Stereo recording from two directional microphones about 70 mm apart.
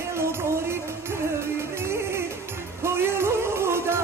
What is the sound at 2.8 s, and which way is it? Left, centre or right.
Music, right.